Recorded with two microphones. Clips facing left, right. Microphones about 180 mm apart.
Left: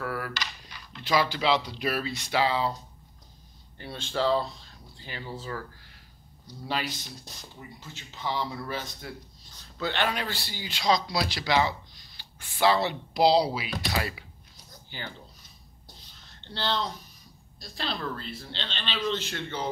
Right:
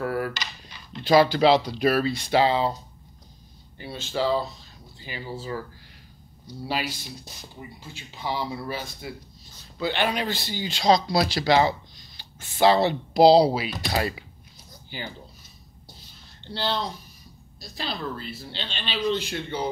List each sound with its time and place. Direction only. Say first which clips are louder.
0.0 s speech: right 6 dB; 25° right (ahead or behind)
3.7 s speech: right 2 dB; 5° right (ahead or behind); by 14.1 s 35° right (ahead or behind)
14.9 s speech: right 4 dB; 10° right (ahead or behind)
16.3 s speech: right 2 dB; 10° right (ahead or behind)